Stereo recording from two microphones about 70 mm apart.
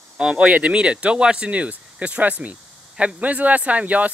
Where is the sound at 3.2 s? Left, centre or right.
Right.